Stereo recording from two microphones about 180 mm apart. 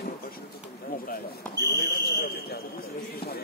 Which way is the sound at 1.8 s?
55° left (ahead or behind).